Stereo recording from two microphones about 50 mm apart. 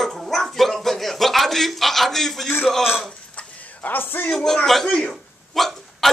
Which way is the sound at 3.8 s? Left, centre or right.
Left.